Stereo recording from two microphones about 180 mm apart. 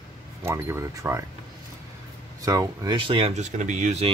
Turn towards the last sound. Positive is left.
turn(degrees=-40)  # may be behind; listen again after turning